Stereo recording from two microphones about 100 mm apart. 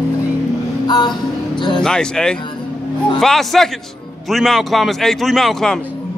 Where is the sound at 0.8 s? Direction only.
45° left (ahead or behind).